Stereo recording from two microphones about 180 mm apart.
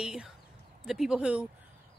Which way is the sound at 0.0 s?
5° right (ahead or behind).